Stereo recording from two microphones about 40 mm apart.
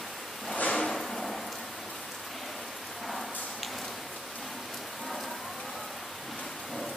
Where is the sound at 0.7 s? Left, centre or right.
Centre.